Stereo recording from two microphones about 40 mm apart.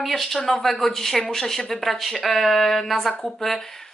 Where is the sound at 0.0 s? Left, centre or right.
Centre.